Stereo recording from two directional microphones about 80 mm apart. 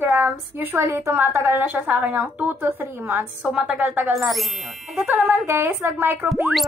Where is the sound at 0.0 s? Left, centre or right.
Right.